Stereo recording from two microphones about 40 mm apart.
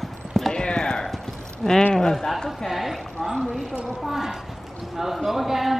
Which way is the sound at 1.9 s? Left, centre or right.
Centre.